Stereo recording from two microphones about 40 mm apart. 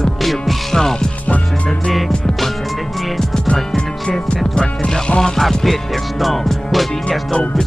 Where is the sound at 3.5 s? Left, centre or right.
Left.